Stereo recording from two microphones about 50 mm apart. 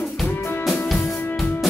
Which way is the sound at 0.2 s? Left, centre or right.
Centre.